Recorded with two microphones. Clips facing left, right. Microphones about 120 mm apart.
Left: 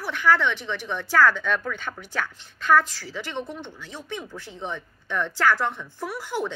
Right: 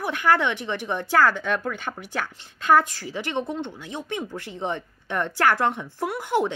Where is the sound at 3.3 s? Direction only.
15° right (ahead or behind).